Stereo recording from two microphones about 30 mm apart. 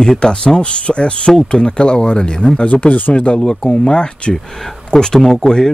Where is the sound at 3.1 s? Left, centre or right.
Left.